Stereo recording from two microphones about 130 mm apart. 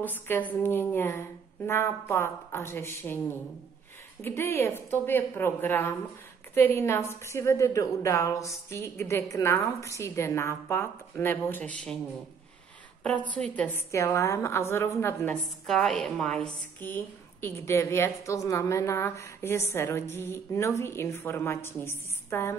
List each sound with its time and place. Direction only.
0.0 s a woman's voice: 15° left (ahead or behind)
13.3 s a woman's voice: 10° left (ahead or behind)
13.7 s a woman's voice: 20° left (ahead or behind)
15.6 s a woman's voice: centre (ahead or behind); by 22.6 s 20° left (ahead or behind)